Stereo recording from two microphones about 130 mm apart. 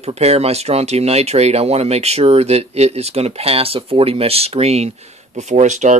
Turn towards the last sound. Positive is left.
turn(degrees=-70)  # may be behind; listen again after turning